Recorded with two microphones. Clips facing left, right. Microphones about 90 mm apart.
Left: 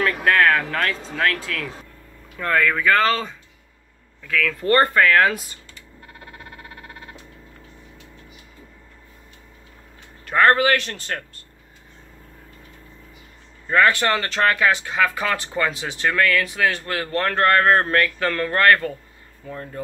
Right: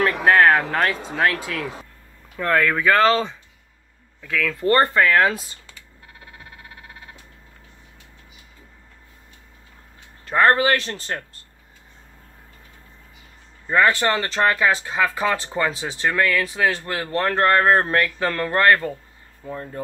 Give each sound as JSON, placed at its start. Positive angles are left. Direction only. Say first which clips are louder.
{"t": 0.2, "sound": "speech", "louder": "right 3 dB", "side_deg": -25}
{"t": 2.3, "sound": "speech", "louder": "right 1 dB", "side_deg": -5}
{"t": 4.6, "sound": "speech", "louder": "even", "side_deg": -20}
{"t": 10.2, "sound": "speech", "louder": "even", "side_deg": -25}
{"t": 13.7, "sound": "speech", "louder": "even", "side_deg": -20}